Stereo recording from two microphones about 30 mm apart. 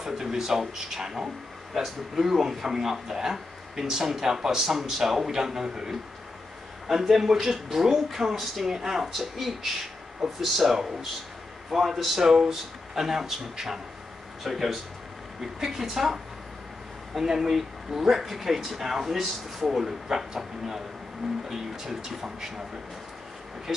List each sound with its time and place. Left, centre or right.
0.0 s speech: centre
9.1 s speech: centre
17.2 s speech: centre
20.1 s speech: centre